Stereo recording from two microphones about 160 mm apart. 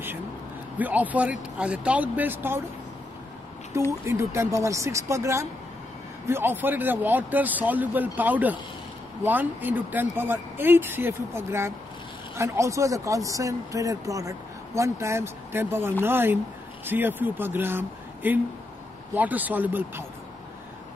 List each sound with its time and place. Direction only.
0.7 s speech: 10° right (ahead or behind)
4.0 s speech: 15° right (ahead or behind)